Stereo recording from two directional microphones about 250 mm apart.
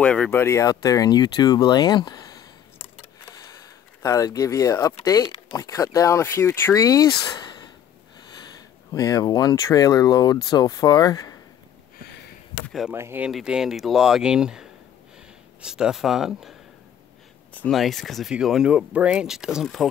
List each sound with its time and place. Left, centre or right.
0.0 s speech: centre
12.6 s speech: centre
17.6 s speech: centre